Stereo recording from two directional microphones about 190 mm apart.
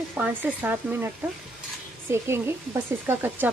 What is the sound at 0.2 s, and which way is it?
Speech, 10° right (ahead or behind).